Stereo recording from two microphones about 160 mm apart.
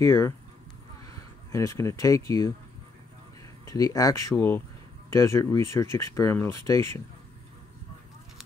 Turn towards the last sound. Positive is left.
turn(degrees=20)  # may be behind; listen again after turning